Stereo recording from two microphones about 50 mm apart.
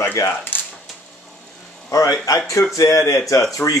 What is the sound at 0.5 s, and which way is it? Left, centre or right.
Typewriter, left.